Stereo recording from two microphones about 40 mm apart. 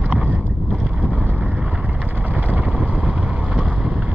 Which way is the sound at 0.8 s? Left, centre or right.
Right.